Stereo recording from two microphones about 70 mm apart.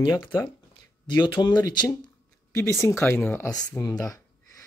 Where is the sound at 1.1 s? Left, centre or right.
Left.